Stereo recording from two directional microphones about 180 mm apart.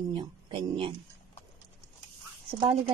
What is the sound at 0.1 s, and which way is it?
Speech, 25° right (ahead or behind).